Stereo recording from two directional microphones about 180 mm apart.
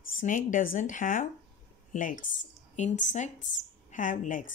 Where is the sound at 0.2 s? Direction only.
45° left (ahead or behind).